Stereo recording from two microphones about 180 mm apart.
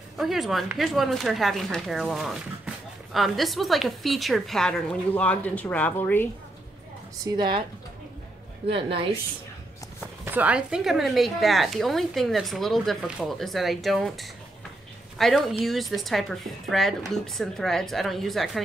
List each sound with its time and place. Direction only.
0.2 s speech: centre (ahead or behind)
7.3 s speech: 25° right (ahead or behind)
8.7 s a woman's voice: 30° right (ahead or behind)
10.2 s speech: 10° right (ahead or behind)